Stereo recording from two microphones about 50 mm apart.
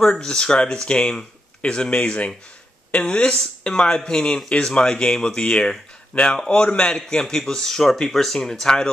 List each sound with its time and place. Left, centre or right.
0.0 s speech: centre